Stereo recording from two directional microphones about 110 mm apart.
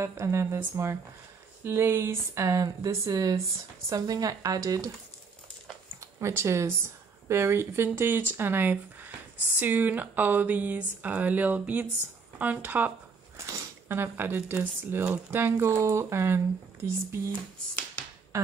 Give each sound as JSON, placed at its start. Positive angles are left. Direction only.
{"t": 0.0, "sound": "speech", "side_deg": -25}
{"t": 6.1, "sound": "speech", "side_deg": -25}
{"t": 18.3, "sound": "a sound", "side_deg": -25}